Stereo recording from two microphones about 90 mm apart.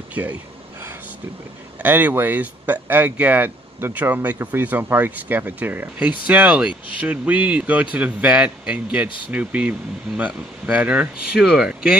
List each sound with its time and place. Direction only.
0.1 s speech: 20° right (ahead or behind)
1.8 s speech: 20° right (ahead or behind)